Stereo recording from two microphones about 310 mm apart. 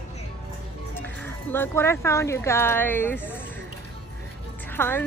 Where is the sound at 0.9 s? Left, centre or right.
Centre.